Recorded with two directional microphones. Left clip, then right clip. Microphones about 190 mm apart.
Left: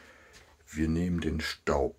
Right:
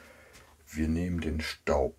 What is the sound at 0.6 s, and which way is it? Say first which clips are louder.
Speech: left 1 dB; 10° left (ahead or behind).